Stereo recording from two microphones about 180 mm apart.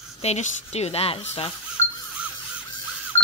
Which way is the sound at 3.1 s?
15° left (ahead or behind).